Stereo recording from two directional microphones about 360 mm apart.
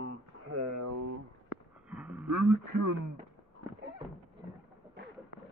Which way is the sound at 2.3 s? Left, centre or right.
Right.